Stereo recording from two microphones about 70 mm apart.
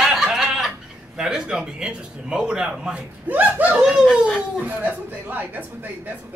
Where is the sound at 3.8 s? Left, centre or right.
Centre.